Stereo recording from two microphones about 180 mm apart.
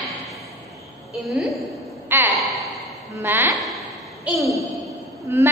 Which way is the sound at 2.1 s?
10° right (ahead or behind).